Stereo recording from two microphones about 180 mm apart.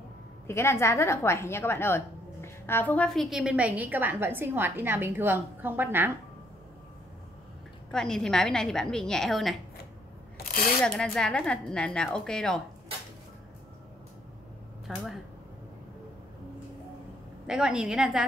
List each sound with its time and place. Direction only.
0.5 s a woman's voice: 15° left (ahead or behind); by 6.1 s 10° right (ahead or behind)
7.9 s a woman's voice: 5° left (ahead or behind)
10.3 s a sound: 50° left (ahead or behind)
10.8 s a woman's voice: 5° left (ahead or behind)
14.9 s speech: 5° right (ahead or behind)
17.5 s a woman's voice: 5° right (ahead or behind)